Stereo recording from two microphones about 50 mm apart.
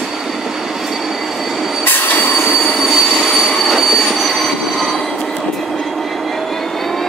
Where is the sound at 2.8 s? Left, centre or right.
Centre.